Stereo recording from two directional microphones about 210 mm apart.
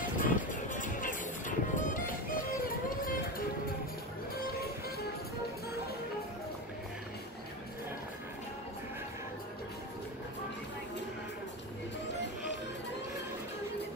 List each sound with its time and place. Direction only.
0.2 s music: 40° left (ahead or behind)